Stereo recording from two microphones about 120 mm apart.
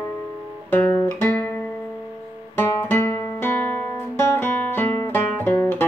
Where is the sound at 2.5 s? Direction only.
20° left (ahead or behind).